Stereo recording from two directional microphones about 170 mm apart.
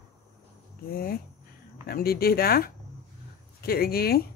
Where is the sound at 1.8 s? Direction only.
60° left (ahead or behind).